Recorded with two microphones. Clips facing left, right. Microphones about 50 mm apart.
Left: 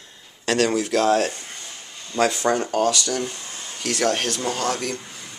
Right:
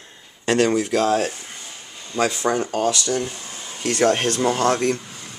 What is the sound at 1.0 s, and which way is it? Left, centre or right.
Speech, centre.